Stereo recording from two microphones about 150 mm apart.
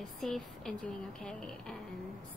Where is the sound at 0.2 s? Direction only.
Centre (ahead or behind).